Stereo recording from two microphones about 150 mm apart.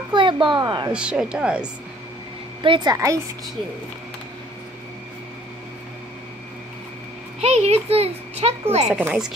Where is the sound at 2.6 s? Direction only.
30° right (ahead or behind).